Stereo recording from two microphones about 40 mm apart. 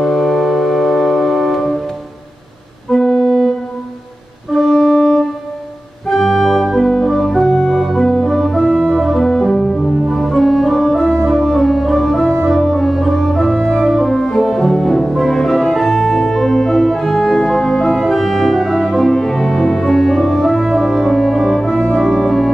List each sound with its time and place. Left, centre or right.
0.0 s music: centre
2.9 s organ: centre
4.6 s music: centre
6.0 s organ: centre
9.2 s music: centre
10.1 s organ: centre
11.0 s organ: centre
12.9 s music: centre
14.0 s organ: left
14.4 s music: centre
18.0 s organ: centre
18.8 s music: centre
21.5 s music: centre